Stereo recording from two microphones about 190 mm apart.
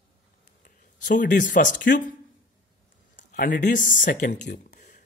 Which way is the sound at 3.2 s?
45° left (ahead or behind).